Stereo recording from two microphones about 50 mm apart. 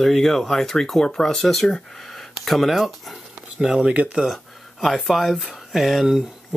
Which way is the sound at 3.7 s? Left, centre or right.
Centre.